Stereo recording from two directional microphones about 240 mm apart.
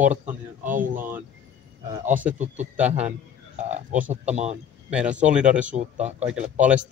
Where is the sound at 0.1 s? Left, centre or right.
Right.